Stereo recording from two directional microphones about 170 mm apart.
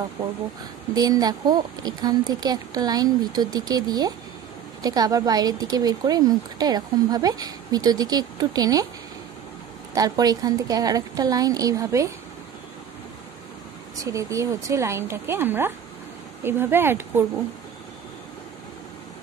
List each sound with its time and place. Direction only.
0.9 s speech: 20° right (ahead or behind)
9.9 s speech: 20° right (ahead or behind)
13.9 s speech: 20° right (ahead or behind)